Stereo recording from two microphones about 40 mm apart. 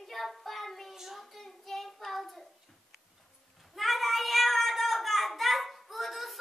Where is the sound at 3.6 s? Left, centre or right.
Centre.